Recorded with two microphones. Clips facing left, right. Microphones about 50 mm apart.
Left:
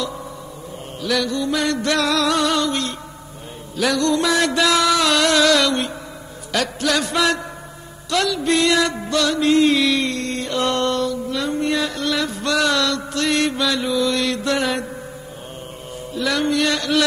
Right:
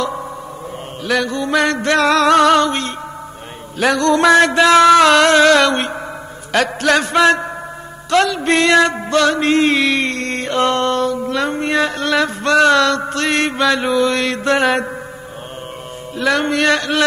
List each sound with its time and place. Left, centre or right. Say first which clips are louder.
1.0 s music: right 3 dB; right
4.5 s music: right 8 dB; right
16.2 s music: right 4 dB; right